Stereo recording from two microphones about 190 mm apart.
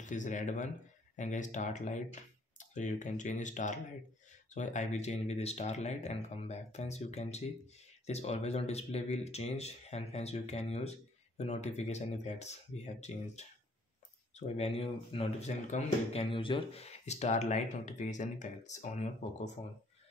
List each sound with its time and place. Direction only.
0.0 s speech: 40° left (ahead or behind)